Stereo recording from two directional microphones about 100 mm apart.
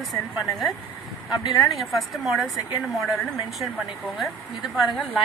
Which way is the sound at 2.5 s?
35° left (ahead or behind).